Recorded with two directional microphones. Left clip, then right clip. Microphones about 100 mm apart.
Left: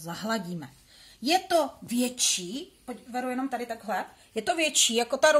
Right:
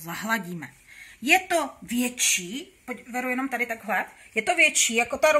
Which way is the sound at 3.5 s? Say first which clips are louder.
Right 5 dB; 20° left (ahead or behind).